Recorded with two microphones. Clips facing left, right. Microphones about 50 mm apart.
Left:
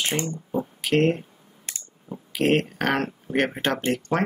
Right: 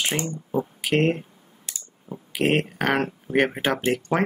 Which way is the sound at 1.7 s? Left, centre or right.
Left.